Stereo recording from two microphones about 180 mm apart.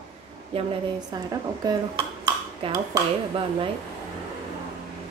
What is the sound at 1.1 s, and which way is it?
A woman's voice, 20° right (ahead or behind).